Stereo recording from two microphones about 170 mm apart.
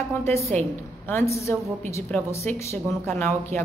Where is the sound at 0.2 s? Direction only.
15° left (ahead or behind).